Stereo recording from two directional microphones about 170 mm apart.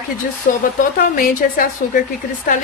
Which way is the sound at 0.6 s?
50° left (ahead or behind).